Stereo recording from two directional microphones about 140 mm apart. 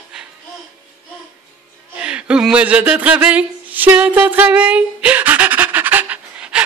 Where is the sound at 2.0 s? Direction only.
5° right (ahead or behind).